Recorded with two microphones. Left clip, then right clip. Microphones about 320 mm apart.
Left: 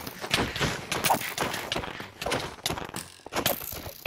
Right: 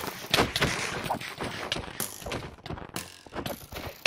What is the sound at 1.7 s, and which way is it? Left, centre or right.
Clip-clop, centre.